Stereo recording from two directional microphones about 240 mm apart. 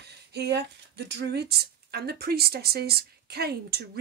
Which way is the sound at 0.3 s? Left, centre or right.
Right.